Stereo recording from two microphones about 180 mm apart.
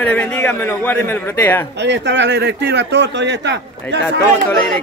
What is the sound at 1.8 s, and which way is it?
Speech, 75° right (ahead or behind).